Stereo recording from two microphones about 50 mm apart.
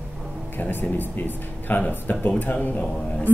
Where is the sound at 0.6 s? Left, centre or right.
Left.